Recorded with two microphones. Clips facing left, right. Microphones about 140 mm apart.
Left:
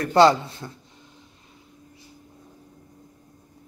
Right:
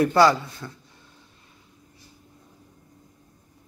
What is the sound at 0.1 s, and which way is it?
Speech, 25° left (ahead or behind).